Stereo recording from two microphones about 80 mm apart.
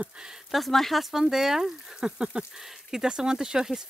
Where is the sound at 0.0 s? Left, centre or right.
Centre.